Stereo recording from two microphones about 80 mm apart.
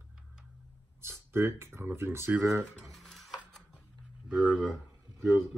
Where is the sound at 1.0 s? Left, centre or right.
Right.